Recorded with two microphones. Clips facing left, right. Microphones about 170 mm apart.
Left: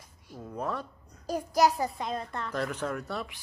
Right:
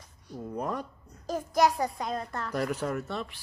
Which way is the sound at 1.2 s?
10° left (ahead or behind).